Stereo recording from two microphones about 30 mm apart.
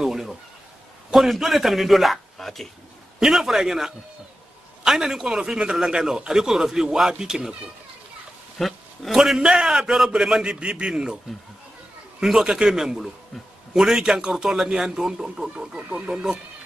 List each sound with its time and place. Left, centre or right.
0.0 s a sound: centre
1.4 s a man's voice: centre
2.3 s speech: centre
3.2 s a man's voice: centre
8.5 s a sound: centre
9.1 s a man's voice: centre
10.6 s a man's voice: right
12.2 s a man's voice: centre